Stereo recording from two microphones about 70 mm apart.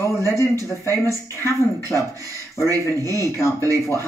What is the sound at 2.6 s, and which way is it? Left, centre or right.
Speech, right.